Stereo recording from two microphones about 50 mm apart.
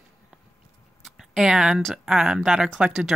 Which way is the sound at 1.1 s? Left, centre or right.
Centre.